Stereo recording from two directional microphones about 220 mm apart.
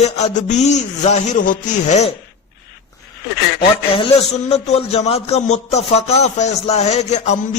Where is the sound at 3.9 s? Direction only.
25° left (ahead or behind).